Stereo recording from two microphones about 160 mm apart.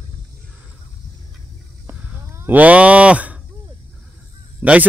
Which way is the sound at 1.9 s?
15° right (ahead or behind).